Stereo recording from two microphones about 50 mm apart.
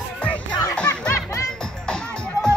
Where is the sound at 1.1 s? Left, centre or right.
Left.